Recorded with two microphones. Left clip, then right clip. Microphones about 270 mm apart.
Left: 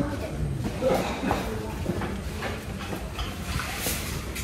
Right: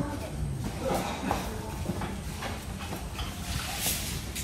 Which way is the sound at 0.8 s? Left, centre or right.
Right.